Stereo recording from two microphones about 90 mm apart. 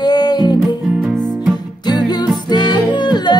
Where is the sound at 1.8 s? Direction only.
50° left (ahead or behind).